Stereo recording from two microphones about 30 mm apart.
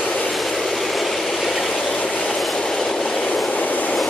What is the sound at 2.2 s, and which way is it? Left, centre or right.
Train, centre.